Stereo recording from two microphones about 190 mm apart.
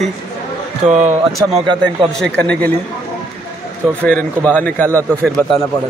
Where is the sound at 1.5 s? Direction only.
25° right (ahead or behind).